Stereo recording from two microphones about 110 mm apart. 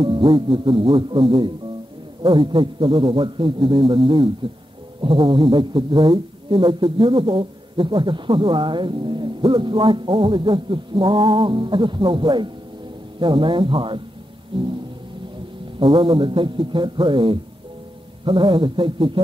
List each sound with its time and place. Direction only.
0.0 s speech: 50° right (ahead or behind)
15.8 s speech: 50° right (ahead or behind)